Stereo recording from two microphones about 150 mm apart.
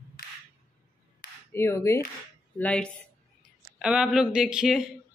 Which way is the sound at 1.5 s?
15° left (ahead or behind).